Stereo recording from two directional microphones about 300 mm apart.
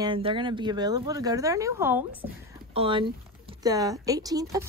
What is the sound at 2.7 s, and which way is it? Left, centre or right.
Speech, centre.